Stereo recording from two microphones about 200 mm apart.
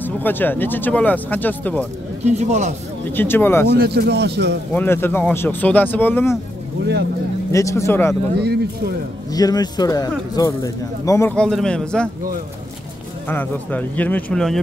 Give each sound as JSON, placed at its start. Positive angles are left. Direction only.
{"t": 0.0, "sound": "speech", "side_deg": 10}
{"t": 2.2, "sound": "speech", "side_deg": -35}
{"t": 3.1, "sound": "speech", "side_deg": 10}
{"t": 3.7, "sound": "a man's voice", "side_deg": -50}
{"t": 4.7, "sound": "speech", "side_deg": 10}
{"t": 6.8, "sound": "speech", "side_deg": -70}
{"t": 7.5, "sound": "speech", "side_deg": 15}
{"t": 8.4, "sound": "a man's voice", "side_deg": -55}
{"t": 9.3, "sound": "a man's voice", "side_deg": 20}
{"t": 13.3, "sound": "speech", "side_deg": 10}